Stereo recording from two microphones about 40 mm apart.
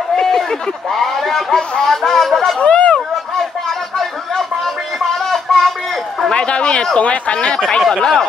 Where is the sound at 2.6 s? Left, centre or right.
Left.